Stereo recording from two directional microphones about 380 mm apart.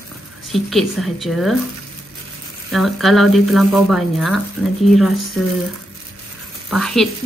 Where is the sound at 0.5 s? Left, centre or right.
Centre.